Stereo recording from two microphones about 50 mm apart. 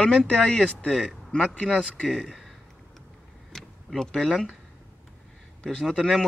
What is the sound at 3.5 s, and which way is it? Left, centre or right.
Power windows, centre.